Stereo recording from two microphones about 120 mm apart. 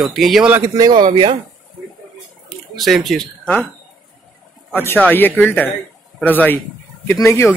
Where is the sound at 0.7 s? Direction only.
35° right (ahead or behind).